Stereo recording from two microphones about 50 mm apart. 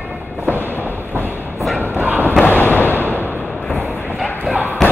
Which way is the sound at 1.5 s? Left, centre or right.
Centre.